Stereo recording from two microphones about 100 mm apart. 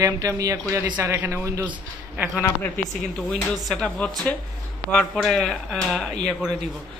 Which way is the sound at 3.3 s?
10° left (ahead or behind).